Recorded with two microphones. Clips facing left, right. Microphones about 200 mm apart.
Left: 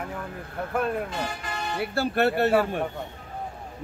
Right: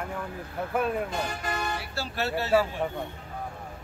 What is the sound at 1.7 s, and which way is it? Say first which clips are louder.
Speech: left 8 dB; 55° left (ahead or behind).